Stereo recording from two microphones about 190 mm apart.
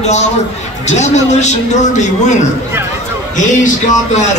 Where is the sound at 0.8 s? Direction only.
35° left (ahead or behind).